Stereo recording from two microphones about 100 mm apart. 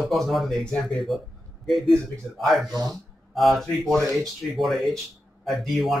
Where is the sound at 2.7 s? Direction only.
35° right (ahead or behind).